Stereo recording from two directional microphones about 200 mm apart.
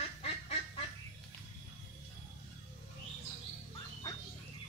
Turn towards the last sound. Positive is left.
turn(degrees=15)  # may be behind; listen again after turning